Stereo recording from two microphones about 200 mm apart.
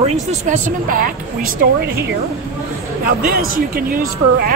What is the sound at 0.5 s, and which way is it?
Speech, 45° right (ahead or behind).